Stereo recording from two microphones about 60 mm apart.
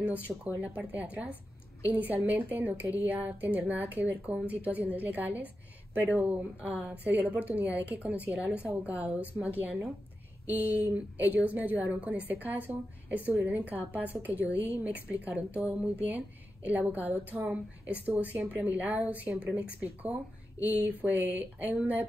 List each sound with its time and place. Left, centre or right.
0.5 s a woman's voice: right